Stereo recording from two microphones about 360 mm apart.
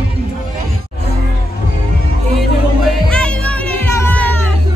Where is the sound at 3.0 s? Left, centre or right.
Centre.